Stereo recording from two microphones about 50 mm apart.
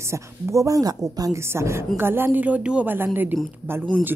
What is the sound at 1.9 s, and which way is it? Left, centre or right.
Speech, right.